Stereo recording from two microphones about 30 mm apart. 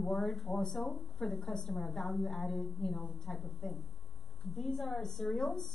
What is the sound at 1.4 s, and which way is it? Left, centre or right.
A woman's voice, centre.